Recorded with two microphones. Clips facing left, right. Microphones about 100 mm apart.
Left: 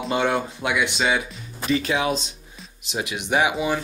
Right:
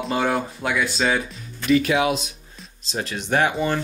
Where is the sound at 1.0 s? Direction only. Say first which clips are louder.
Right 1 dB; 5° left (ahead or behind).